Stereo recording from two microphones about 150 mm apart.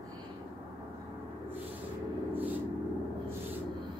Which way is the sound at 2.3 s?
10° right (ahead or behind).